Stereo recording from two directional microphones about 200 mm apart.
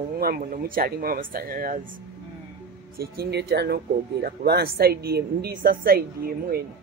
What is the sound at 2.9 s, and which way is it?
A man's voice, 55° right (ahead or behind).